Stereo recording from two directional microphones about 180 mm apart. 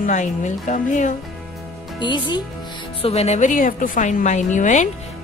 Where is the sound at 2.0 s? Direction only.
25° left (ahead or behind).